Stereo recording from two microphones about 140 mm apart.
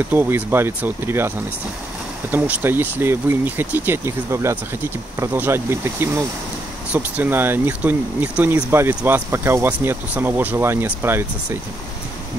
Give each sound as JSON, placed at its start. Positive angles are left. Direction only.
{"t": 0.1, "sound": "speech", "side_deg": -15}
{"t": 2.3, "sound": "speech", "side_deg": -15}